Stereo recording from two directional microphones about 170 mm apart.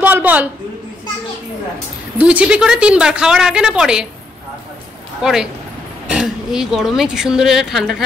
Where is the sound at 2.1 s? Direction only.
5° right (ahead or behind).